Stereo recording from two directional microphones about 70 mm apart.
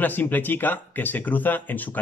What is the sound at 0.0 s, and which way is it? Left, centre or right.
Speech, left.